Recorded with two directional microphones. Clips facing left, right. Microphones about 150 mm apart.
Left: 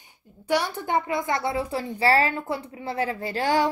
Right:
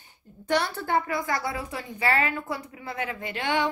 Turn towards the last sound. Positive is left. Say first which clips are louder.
# left 4 dB
turn(degrees=35)  # may be behind; listen again after turning